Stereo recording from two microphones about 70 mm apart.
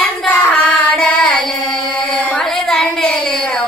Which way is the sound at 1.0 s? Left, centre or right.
Centre.